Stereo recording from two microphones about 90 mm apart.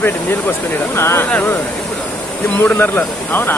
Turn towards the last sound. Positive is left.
turn(degrees=20)  # may be behind; listen again after turning